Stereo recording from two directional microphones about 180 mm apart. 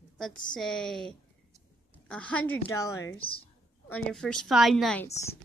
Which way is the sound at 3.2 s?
30° left (ahead or behind).